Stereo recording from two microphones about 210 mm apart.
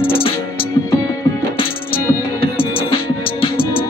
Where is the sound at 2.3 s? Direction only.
25° left (ahead or behind).